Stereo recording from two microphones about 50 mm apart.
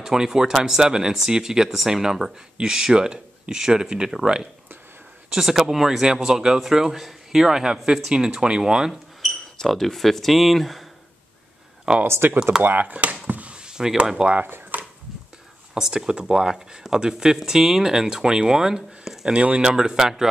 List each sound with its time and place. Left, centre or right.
0.0 s speech: centre
9.6 s speech: centre
11.9 s speech: centre
12.2 s speech: right
12.8 s a sound: right
13.7 s speech: centre
14.5 s a sound: right
15.7 s speech: centre
19.3 s speech: right
19.7 s speech: centre